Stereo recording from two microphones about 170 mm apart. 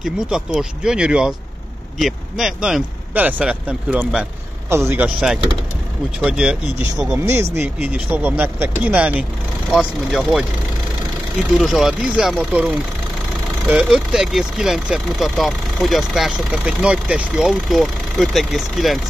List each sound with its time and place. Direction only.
0.0 s speech: 5° right (ahead or behind)
11.5 s speech: centre (ahead or behind)